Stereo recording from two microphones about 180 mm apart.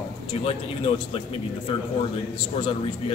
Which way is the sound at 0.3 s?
30° left (ahead or behind).